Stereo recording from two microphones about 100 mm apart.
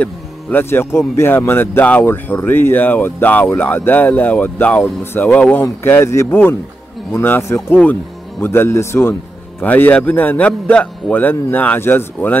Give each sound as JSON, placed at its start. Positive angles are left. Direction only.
{"t": 0.0, "sound": "a man's voice", "side_deg": 20}